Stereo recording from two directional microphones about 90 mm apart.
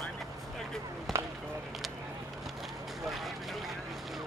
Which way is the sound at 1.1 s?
Centre (ahead or behind).